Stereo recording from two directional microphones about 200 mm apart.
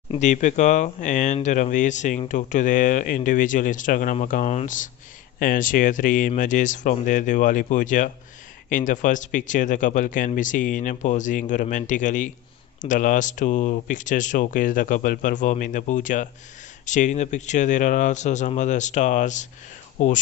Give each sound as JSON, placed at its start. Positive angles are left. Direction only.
{"t": 0.1, "sound": "speech", "side_deg": 35}